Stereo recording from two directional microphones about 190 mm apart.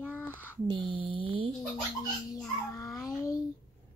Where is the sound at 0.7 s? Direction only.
25° right (ahead or behind).